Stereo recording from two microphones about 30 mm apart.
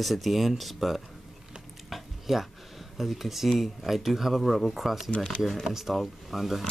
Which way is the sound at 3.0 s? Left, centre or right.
Centre.